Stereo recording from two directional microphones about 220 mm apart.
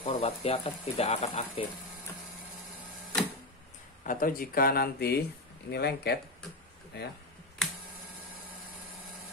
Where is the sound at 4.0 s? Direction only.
40° left (ahead or behind).